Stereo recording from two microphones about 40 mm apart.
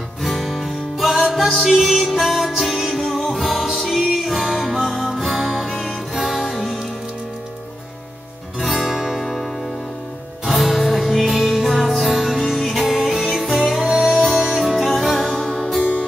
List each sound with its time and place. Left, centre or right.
0.2 s music: centre
4.0 s music: centre
8.5 s music: centre
14.1 s music: centre
14.4 s music: centre
15.3 s music: centre